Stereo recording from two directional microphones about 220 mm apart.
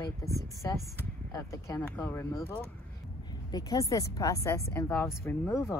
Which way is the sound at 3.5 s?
15° left (ahead or behind).